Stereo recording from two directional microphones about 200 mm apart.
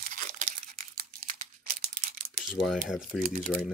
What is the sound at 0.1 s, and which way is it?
Crumpling, 40° right (ahead or behind).